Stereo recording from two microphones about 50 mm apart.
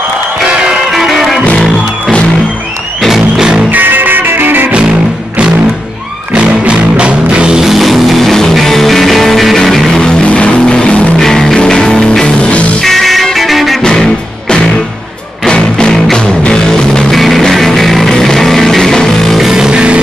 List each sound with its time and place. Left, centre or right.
0.9 s music: centre
3.1 s music: centre
3.7 s music: right
6.3 s music: right
7.6 s music: centre; by 11.1 s left
11.1 s music: centre
12.8 s music: centre
15.4 s music: centre
17.1 s music: centre
19.3 s music: centre